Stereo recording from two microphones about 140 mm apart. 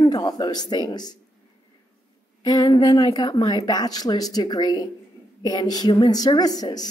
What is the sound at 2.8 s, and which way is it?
Female singing, 30° left (ahead or behind).